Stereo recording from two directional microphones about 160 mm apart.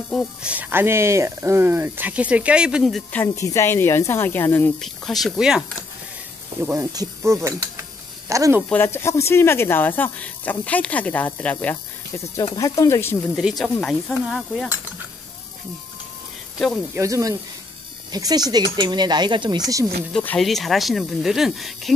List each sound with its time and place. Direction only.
0.1 s speech: 5° right (ahead or behind)
3.1 s speech: 15° left (ahead or behind)
4.7 s speech: centre (ahead or behind)
6.6 s speech: 15° right (ahead or behind)
8.3 s cutlery: 20° right (ahead or behind)
8.6 s speech: 15° left (ahead or behind)
12.5 s speech: 20° left (ahead or behind)
13.4 s speech: 5° right (ahead or behind)
16.5 s speech: centre (ahead or behind)
16.9 s cutlery: 20° right (ahead or behind)
20.1 s speech: 5° left (ahead or behind)